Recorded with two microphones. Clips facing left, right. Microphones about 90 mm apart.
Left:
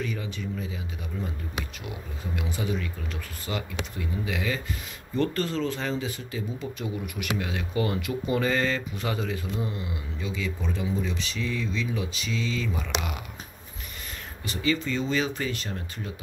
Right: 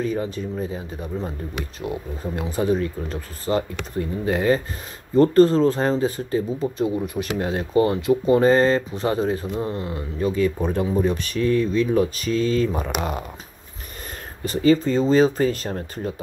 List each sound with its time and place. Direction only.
0.0 s speech: 35° right (ahead or behind)
14.4 s speech: 40° right (ahead or behind)